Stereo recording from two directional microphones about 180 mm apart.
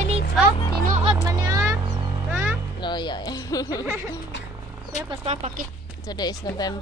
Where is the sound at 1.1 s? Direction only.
20° right (ahead or behind).